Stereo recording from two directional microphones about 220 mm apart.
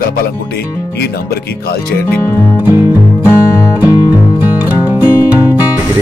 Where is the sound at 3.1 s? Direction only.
15° left (ahead or behind).